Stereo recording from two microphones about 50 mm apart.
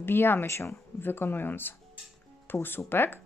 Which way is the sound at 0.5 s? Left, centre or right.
Left.